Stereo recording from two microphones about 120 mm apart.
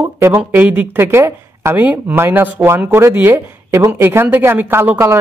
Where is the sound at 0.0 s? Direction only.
20° right (ahead or behind).